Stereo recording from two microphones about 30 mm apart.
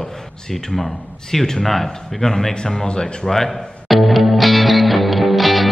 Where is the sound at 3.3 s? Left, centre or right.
Centre.